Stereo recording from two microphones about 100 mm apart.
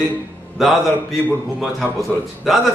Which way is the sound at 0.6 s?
5° right (ahead or behind).